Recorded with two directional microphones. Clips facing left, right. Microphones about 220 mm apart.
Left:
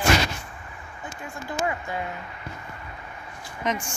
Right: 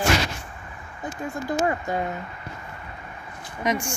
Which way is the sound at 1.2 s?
40° right (ahead or behind).